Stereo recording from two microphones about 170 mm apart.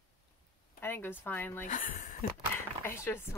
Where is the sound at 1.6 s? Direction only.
50° left (ahead or behind).